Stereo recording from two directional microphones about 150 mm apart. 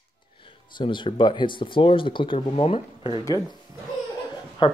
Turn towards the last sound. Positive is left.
turn(degrees=35)  # may be behind; listen again after turning